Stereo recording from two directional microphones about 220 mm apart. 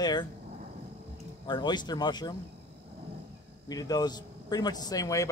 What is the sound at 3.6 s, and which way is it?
Speech, 15° left (ahead or behind).